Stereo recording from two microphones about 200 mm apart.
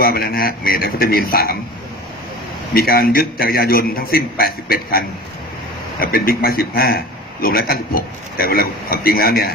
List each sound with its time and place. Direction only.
0.0 s a man's voice: 50° left (ahead or behind)
2.7 s a man's voice: 50° left (ahead or behind)